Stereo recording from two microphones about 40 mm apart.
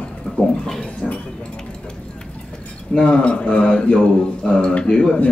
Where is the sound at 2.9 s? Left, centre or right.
Left.